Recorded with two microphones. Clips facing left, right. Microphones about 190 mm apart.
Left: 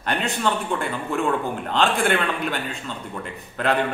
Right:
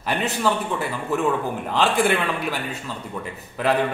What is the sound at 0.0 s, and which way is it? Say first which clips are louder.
Speech: right 1 dB; 5° right (ahead or behind).